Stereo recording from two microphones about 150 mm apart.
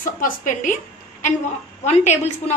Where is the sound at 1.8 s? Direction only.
50° left (ahead or behind).